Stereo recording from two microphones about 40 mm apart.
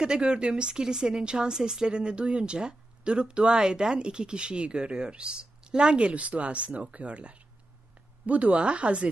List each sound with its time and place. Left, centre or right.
0.0 s a woman's voice: right